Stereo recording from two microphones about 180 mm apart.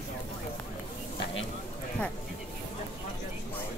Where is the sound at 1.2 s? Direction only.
90° left.